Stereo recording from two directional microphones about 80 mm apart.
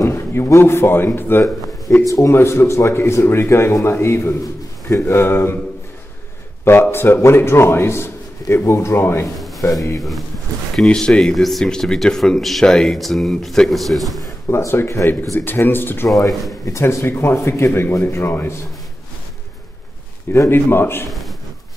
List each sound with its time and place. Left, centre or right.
0.0 s a man's voice: left
6.6 s a man's voice: left
10.8 s speech: centre
14.5 s a man's voice: left
16.6 s a man's voice: left
20.3 s a man's voice: left
21.1 s a sound: centre